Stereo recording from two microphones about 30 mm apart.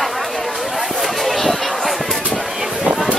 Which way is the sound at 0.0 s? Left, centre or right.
Centre.